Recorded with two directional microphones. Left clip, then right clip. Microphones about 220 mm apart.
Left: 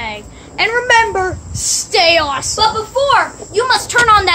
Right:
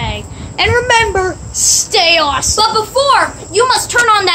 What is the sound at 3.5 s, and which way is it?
Speech, 5° right (ahead or behind).